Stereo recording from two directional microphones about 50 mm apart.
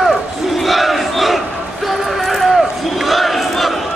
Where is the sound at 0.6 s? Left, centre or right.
Centre.